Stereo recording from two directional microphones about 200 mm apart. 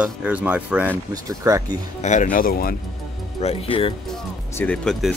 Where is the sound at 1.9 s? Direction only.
35° left (ahead or behind).